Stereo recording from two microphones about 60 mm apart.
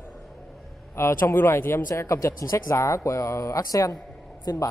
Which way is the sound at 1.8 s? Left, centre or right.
Left.